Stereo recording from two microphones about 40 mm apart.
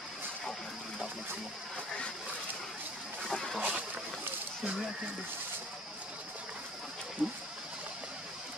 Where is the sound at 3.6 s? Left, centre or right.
Right.